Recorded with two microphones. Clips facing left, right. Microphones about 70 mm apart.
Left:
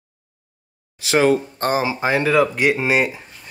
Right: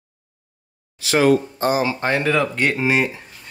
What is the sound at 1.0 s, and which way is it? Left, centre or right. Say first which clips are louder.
Speech: even; left.